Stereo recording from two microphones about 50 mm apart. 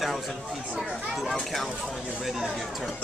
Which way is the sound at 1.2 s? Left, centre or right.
Centre.